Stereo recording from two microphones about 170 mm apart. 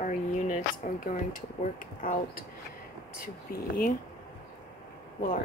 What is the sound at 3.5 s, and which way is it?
Speech, 60° left (ahead or behind).